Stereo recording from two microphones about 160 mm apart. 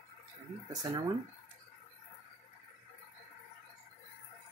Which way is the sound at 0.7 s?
25° right (ahead or behind).